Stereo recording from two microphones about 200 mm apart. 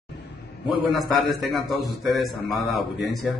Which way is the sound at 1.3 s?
Centre (ahead or behind).